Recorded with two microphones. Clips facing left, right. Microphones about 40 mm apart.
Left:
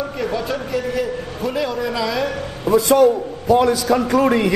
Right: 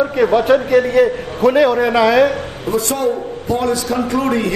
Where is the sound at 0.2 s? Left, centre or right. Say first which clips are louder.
Right 12 dB; right.